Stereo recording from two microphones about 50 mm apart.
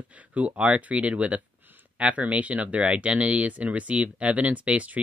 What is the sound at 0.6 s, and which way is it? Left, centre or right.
Speech, right.